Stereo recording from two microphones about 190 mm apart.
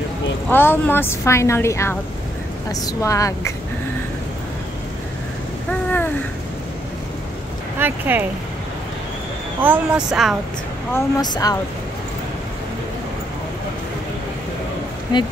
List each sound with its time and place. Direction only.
0.5 s a woman's voice: 10° left (ahead or behind)
5.7 s a sound: 10° left (ahead or behind)
7.8 s speech: 10° right (ahead or behind)
9.6 s speech: 5° right (ahead or behind)
10.9 s speech: 15° left (ahead or behind)